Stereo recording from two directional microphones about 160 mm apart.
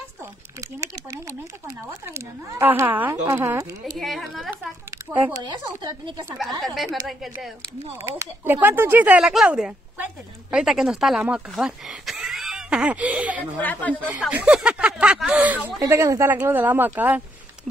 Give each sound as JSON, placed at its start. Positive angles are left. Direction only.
{"t": 1.9, "sound": "speech", "side_deg": -15}
{"t": 4.0, "sound": "speech", "side_deg": 0}
{"t": 5.4, "sound": "speech", "side_deg": -25}
{"t": 6.6, "sound": "speech", "side_deg": 0}
{"t": 8.5, "sound": "speech", "side_deg": -15}
{"t": 13.6, "sound": "speech", "side_deg": 10}
{"t": 14.3, "sound": "speech", "side_deg": -5}